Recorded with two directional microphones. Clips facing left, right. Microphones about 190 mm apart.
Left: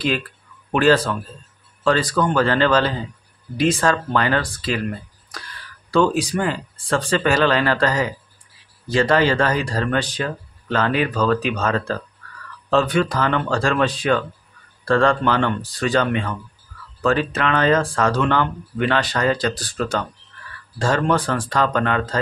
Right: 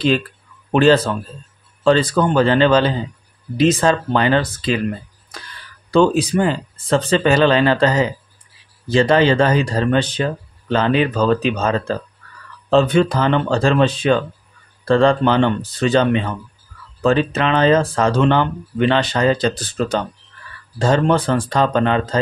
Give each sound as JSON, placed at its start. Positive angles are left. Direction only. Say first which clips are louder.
{"t": 0.7, "sound": "speech", "louder": "right 3 dB", "side_deg": -25}